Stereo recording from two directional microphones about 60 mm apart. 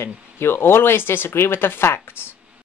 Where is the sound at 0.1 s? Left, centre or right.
Centre.